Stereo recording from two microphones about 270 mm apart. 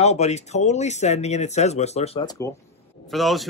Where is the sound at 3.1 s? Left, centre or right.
Centre.